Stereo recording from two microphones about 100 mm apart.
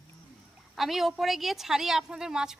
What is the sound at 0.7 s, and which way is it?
A woman's voice, centre (ahead or behind).